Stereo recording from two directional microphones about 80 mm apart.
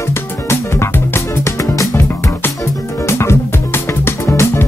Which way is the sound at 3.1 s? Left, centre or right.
Left.